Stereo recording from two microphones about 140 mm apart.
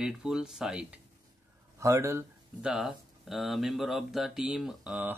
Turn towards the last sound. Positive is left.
turn(degrees=-10)  # may be behind; listen again after turning